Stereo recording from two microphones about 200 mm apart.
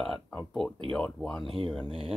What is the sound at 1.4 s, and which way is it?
Speech, 25° right (ahead or behind).